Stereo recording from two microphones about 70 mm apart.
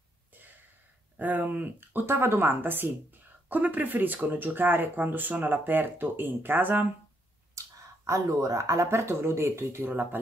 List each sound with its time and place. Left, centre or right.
1.1 s speech: right
7.6 s a sound: right
8.1 s speech: right